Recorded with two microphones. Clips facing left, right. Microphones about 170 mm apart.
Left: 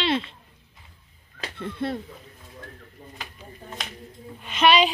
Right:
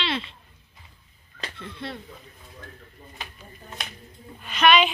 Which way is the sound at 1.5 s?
50° left (ahead or behind).